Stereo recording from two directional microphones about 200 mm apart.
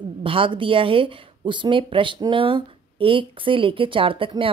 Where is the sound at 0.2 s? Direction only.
25° right (ahead or behind).